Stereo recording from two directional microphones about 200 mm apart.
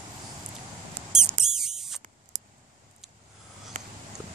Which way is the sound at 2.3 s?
35° right (ahead or behind).